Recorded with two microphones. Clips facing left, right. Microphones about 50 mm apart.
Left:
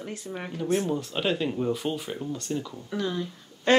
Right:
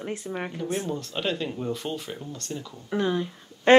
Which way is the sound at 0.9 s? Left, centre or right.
Centre.